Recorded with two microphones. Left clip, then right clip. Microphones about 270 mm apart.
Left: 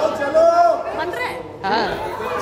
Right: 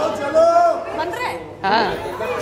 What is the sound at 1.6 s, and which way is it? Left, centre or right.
Speech, centre.